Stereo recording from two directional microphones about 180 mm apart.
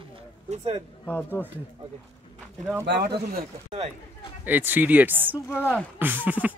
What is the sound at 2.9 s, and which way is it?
Speech, 70° right (ahead or behind).